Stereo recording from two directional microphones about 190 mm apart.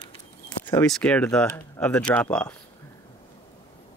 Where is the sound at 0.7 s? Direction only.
10° left (ahead or behind).